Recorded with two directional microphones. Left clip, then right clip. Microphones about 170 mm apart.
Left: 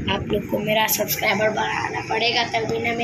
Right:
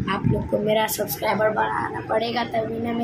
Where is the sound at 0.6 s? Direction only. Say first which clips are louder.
Left 2 dB; 25° right (ahead or behind).